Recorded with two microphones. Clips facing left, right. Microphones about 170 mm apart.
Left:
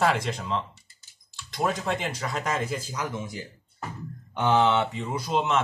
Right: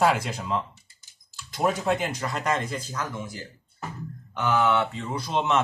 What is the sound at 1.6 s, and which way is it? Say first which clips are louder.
A man's voice: right 3 dB; 5° right (ahead or behind).